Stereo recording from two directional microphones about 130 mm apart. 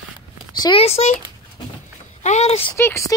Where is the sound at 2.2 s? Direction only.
60° left (ahead or behind).